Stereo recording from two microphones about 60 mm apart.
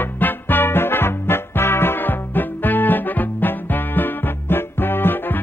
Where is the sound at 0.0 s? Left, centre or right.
Left.